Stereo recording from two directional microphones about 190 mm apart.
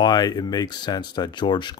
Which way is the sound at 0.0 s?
20° left (ahead or behind).